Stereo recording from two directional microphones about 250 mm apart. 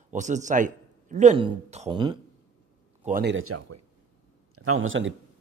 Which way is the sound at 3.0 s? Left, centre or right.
Right.